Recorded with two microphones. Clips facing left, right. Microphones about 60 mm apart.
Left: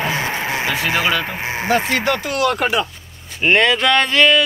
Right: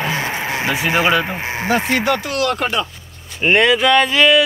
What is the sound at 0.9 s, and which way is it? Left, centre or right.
Speech, centre.